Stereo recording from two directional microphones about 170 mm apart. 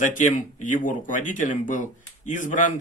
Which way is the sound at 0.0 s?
50° left (ahead or behind).